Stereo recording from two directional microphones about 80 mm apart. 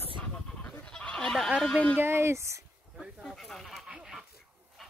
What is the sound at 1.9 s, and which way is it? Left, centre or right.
Speech, right.